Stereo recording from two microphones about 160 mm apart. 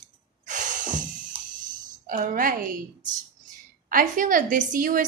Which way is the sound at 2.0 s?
60° right (ahead or behind).